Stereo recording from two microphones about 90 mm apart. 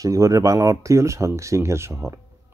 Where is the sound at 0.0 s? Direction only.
35° right (ahead or behind).